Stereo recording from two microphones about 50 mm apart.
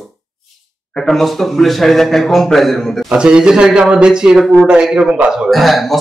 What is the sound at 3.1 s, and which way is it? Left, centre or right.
A man's voice, centre.